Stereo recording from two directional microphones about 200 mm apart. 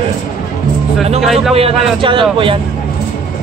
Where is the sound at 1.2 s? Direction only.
Centre (ahead or behind).